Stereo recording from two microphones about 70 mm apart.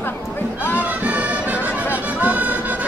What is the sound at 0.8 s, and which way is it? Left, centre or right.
Music, right.